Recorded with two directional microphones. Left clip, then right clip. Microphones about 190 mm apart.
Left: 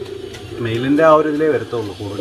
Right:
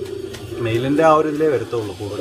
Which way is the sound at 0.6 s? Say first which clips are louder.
Left 2 dB; 35° left (ahead or behind).